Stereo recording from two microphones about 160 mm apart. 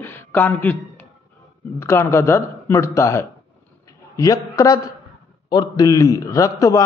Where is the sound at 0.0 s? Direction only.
15° left (ahead or behind).